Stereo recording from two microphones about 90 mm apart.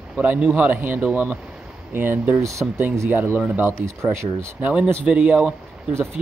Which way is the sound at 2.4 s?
35° right (ahead or behind).